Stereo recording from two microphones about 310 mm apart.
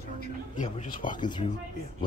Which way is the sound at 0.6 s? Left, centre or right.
Left.